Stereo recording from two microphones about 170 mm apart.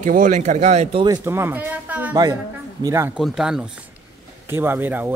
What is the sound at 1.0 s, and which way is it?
Speech, 20° right (ahead or behind).